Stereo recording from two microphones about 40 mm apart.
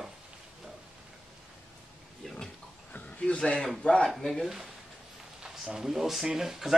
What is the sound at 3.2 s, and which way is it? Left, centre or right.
Speech, left.